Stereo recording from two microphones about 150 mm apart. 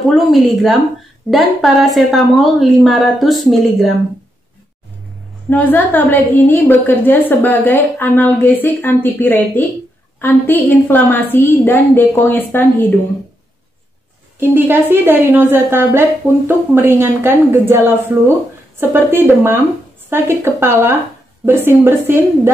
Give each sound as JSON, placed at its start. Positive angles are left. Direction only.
{"t": 0.3, "sound": "a woman's voice", "side_deg": 0}
{"t": 5.5, "sound": "a woman's voice", "side_deg": 10}
{"t": 14.4, "sound": "a woman's voice", "side_deg": -15}